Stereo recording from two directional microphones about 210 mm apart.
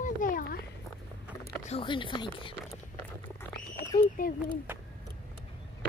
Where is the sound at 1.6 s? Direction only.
25° left (ahead or behind).